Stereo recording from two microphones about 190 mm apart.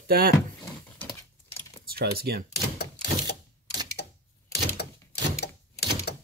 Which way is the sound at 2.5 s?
60° left (ahead or behind).